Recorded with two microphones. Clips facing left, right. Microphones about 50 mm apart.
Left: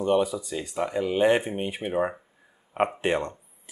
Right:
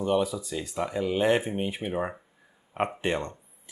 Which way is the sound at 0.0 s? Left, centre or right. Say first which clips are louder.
Left 3 dB; centre.